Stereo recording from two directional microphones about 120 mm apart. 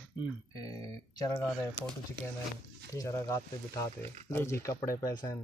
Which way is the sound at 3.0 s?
25° left (ahead or behind).